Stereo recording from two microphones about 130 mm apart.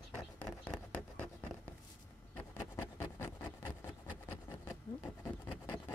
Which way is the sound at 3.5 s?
25° left (ahead or behind).